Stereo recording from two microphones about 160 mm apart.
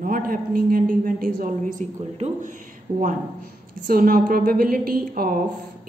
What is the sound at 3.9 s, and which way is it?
A woman's voice, 65° right (ahead or behind).